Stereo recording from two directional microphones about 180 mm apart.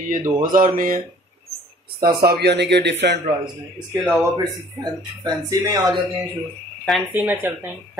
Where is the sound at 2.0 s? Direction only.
55° right (ahead or behind); by 3.2 s 70° right (ahead or behind).